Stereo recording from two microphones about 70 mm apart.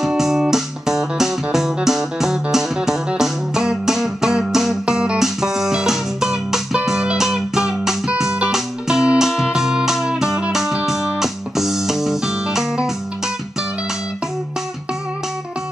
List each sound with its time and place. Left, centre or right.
0.0 s music: centre